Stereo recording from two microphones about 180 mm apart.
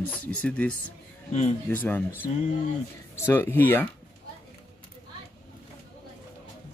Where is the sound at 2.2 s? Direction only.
40° left (ahead or behind).